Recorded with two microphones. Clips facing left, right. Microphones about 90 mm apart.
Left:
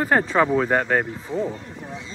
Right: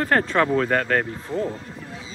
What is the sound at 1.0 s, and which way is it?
Speech, centre (ahead or behind).